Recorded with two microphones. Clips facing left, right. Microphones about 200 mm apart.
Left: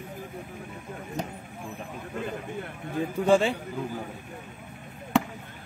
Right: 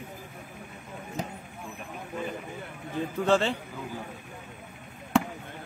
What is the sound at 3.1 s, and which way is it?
Speech, 10° left (ahead or behind).